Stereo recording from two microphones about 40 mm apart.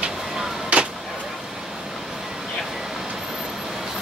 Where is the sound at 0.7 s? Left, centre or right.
Right.